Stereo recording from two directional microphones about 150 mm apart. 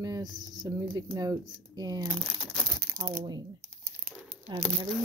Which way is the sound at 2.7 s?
90° right.